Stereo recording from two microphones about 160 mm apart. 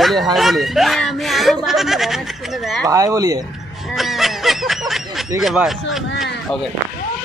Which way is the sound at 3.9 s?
Centre (ahead or behind).